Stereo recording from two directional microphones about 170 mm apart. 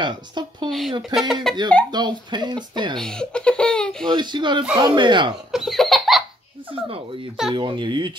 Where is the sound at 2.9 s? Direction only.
5° left (ahead or behind).